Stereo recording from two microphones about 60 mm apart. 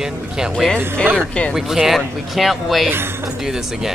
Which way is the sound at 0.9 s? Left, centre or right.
Centre.